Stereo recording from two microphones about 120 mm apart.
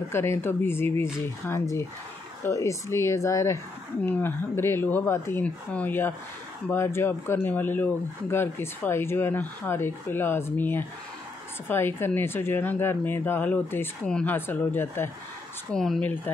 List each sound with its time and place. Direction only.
0.1 s speech: 20° left (ahead or behind)
15.7 s speech: 5° left (ahead or behind)